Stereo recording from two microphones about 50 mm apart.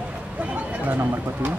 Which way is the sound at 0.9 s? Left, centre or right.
Right.